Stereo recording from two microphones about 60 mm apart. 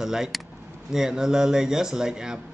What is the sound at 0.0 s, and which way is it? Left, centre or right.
A man's voice, centre.